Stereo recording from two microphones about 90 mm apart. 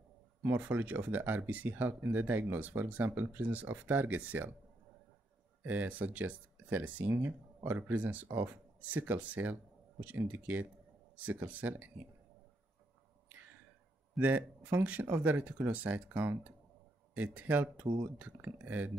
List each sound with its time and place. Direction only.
0.4 s speech: 25° right (ahead or behind)
5.7 s speech: 20° right (ahead or behind)
14.2 s speech: 20° right (ahead or behind)